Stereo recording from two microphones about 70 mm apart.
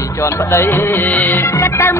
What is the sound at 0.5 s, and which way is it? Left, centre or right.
Music, left.